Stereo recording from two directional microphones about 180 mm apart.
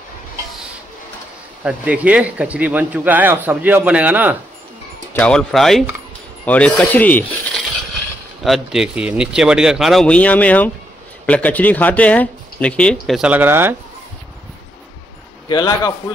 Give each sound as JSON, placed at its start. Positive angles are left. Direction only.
{"t": 1.6, "sound": "speech", "side_deg": -10}
{"t": 5.1, "sound": "speech", "side_deg": 5}
{"t": 8.5, "sound": "speech", "side_deg": 0}
{"t": 15.4, "sound": "a man's voice", "side_deg": 25}